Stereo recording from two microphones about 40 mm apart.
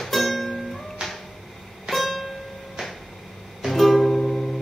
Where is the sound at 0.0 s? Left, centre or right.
Centre.